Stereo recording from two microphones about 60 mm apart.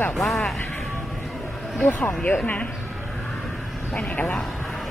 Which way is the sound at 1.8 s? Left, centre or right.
Left.